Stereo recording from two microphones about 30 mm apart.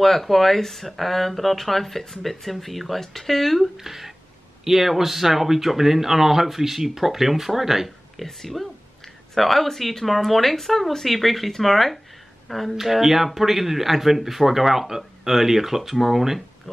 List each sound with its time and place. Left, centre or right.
0.0 s speech: centre
3.7 s speech: centre
8.2 s speech: centre
16.7 s pig: centre